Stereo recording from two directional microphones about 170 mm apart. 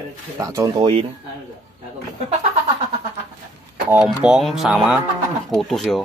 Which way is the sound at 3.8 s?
5° right (ahead or behind).